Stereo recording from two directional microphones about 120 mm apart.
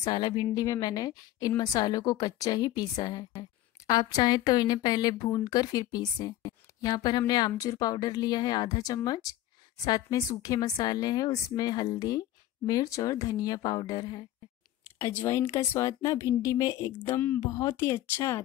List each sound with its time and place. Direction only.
0.0 s a woman's voice: 40° left (ahead or behind); by 18.4 s 25° left (ahead or behind)